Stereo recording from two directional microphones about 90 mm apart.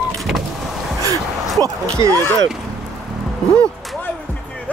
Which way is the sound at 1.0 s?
45° right (ahead or behind).